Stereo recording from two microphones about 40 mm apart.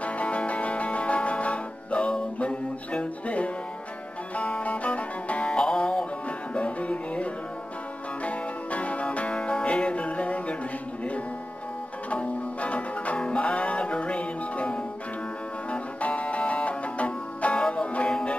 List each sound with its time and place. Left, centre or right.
0.0 s music: left
12.1 s music: left